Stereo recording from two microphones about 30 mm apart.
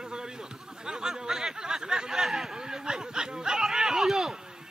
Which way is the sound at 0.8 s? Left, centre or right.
Right.